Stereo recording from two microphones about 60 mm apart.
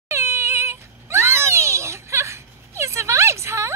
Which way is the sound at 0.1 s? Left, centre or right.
Right.